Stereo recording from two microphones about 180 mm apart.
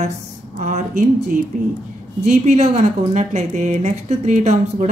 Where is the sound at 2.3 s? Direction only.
40° right (ahead or behind).